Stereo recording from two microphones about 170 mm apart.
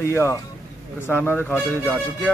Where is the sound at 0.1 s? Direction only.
15° left (ahead or behind).